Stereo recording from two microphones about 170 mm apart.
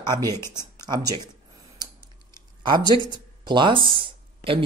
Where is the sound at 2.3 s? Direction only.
25° right (ahead or behind).